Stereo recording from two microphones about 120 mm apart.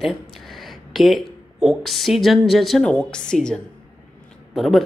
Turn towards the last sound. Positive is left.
turn(degrees=0)  # may be behind; listen again after turning